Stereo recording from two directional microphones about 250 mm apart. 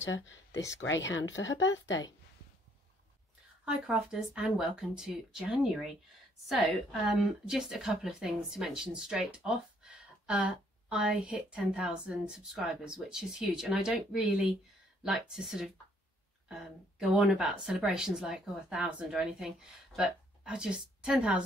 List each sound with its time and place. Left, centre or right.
0.0 s speech: left
3.6 s a woman's voice: centre